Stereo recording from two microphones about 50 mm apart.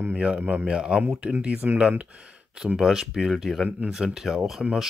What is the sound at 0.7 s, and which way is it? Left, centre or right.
Speech, centre.